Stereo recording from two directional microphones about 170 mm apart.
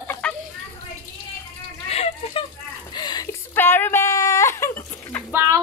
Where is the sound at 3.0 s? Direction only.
25° left (ahead or behind).